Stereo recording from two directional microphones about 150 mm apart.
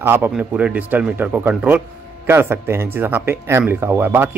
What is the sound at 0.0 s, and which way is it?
A man's voice, 15° right (ahead or behind).